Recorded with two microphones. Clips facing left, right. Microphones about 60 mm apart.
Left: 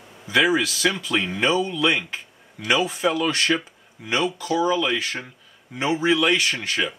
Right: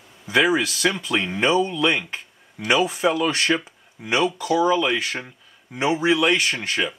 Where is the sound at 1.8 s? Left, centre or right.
Centre.